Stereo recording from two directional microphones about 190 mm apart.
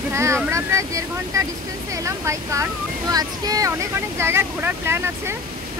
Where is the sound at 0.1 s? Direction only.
15° right (ahead or behind).